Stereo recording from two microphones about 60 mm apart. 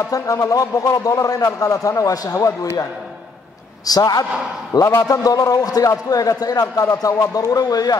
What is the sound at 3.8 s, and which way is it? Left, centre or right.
A man's voice, left.